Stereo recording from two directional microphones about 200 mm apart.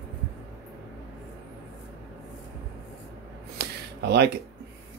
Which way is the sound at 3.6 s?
50° right (ahead or behind).